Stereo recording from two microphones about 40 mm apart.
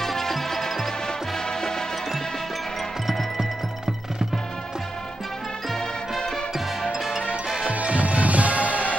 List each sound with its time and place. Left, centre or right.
0.0 s music: centre
3.1 s music: centre
5.8 s music: centre
7.0 s music: centre
7.7 s music: right